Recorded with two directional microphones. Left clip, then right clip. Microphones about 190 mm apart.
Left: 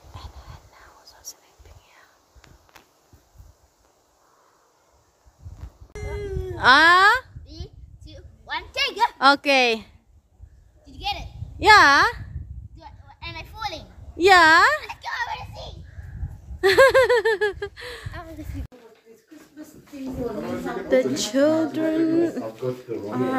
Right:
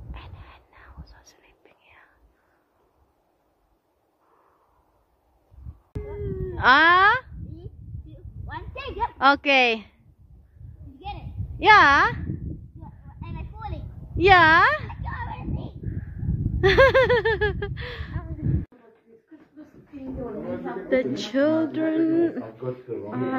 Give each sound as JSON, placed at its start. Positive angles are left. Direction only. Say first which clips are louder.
{"t": 0.1, "sound": "dog", "louder": "left 2 dB", "side_deg": -15}
{"t": 6.5, "sound": "a sound", "louder": "left 2 dB", "side_deg": 5}
{"t": 8.1, "sound": "a sound", "louder": "left 7 dB", "side_deg": 20}
{"t": 9.2, "sound": "speech", "louder": "even", "side_deg": 5}
{"t": 11.6, "sound": "speech", "louder": "left 1 dB", "side_deg": 5}
{"t": 12.8, "sound": "children playing", "louder": "left 12 dB", "side_deg": 25}
{"t": 14.1, "sound": "speech", "louder": "left 1 dB", "side_deg": 5}
{"t": 15.0, "sound": "child singing", "louder": "left 6 dB", "side_deg": 20}
{"t": 16.6, "sound": "speech", "louder": "left 2 dB", "side_deg": 5}
{"t": 20.9, "sound": "speech", "louder": "left 3 dB", "side_deg": 5}